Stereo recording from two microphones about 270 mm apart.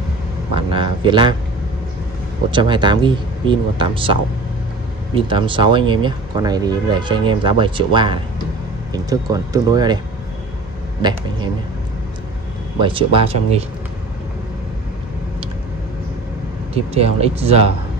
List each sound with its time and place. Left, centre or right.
0.7 s speech: centre
2.5 s speech: centre
11.0 s speech: centre
12.8 s speech: centre
16.7 s speech: right